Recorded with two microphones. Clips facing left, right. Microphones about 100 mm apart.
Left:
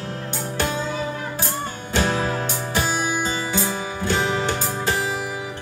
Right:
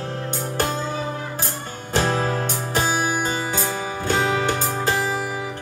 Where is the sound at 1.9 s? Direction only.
40° right (ahead or behind).